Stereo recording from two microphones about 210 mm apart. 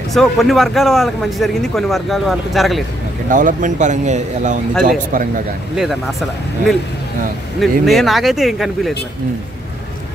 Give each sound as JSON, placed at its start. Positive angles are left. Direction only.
{"t": 0.1, "sound": "a man's voice", "side_deg": 0}
{"t": 3.3, "sound": "speech", "side_deg": -40}
{"t": 5.8, "sound": "a man's voice", "side_deg": 0}
{"t": 7.8, "sound": "a man's voice", "side_deg": 0}